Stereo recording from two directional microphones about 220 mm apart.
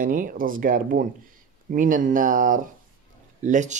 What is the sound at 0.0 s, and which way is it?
Speech, 40° right (ahead or behind).